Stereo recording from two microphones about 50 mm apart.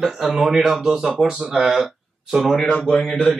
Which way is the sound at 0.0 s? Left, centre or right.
Centre.